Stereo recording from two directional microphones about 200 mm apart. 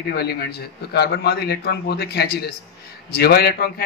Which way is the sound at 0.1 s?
55° left (ahead or behind).